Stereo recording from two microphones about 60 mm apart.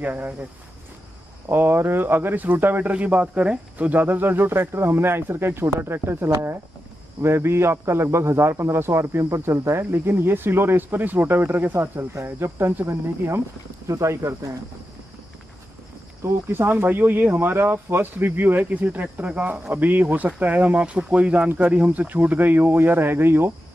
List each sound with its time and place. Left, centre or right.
0.0 s speech: right
1.5 s speech: right
2.9 s a man's voice: right
13.8 s speech: right
16.2 s speech: right